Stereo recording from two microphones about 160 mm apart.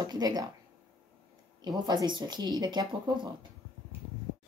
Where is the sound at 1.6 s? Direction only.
25° right (ahead or behind).